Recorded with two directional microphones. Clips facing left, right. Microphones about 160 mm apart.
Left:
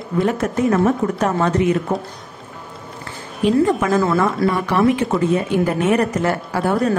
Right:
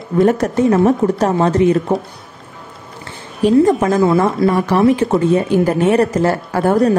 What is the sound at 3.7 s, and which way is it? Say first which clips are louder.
Speech: right 4 dB; 35° right (ahead or behind).